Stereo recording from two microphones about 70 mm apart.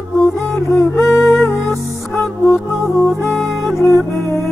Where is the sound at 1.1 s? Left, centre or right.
Left.